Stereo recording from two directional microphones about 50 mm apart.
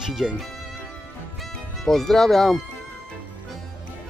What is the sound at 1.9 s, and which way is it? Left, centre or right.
Speech, centre.